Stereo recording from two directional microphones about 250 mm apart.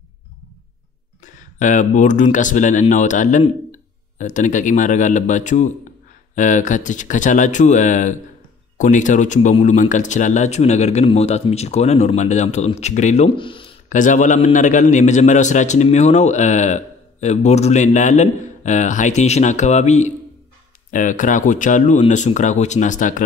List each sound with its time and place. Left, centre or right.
1.6 s a man's voice: left
13.8 s a man's voice: left